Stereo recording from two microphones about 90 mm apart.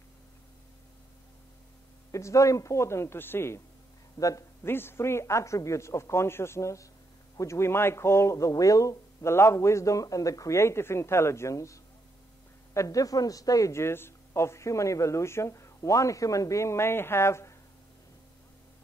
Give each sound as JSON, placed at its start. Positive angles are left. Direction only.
{"t": 2.0, "sound": "speech", "side_deg": 35}
{"t": 4.6, "sound": "speech", "side_deg": 25}